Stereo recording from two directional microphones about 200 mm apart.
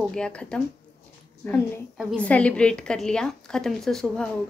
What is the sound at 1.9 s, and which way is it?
A woman's voice, 5° left (ahead or behind).